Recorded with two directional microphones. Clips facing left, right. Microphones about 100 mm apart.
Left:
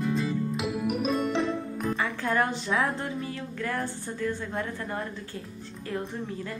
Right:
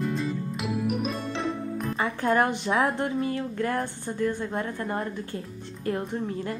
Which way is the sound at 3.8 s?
20° right (ahead or behind).